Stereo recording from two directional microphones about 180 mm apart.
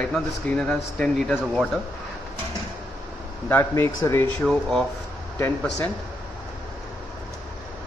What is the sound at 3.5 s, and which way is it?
Speech, 10° left (ahead or behind).